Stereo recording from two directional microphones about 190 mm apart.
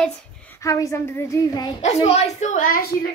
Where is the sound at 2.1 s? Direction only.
35° left (ahead or behind).